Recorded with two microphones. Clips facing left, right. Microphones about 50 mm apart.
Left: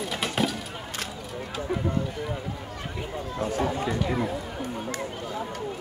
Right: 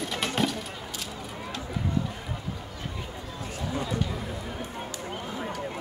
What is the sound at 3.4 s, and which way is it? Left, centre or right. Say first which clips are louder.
Chatter: left 6 dB; left.